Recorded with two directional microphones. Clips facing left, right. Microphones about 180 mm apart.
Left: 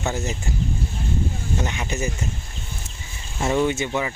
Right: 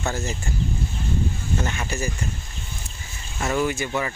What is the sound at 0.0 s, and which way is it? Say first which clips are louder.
Speech: left 1 dB; 20° left (ahead or behind).